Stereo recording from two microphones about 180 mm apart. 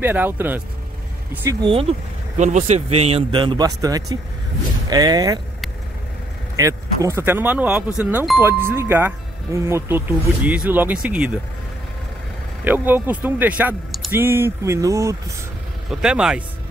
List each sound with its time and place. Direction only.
0.0 s speech: 10° right (ahead or behind)
1.6 s a man's voice: 30° right (ahead or behind)
2.3 s a man's voice: 40° right (ahead or behind); by 5.4 s 20° right (ahead or behind)
6.5 s speech: 20° right (ahead or behind)
12.6 s speech: 10° right (ahead or behind)
15.9 s speech: 5° right (ahead or behind)